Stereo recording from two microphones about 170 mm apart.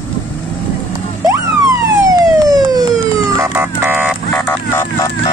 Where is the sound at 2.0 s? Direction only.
20° right (ahead or behind).